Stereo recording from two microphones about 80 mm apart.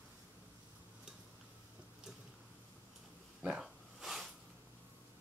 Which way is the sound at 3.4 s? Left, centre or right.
Centre.